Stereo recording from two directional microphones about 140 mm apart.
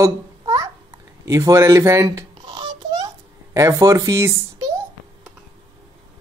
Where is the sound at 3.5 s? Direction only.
20° right (ahead or behind).